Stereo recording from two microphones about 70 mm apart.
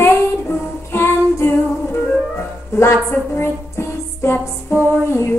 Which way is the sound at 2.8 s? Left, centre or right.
Left.